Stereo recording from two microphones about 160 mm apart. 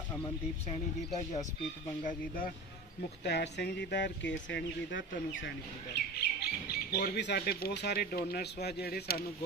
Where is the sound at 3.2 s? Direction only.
90° left.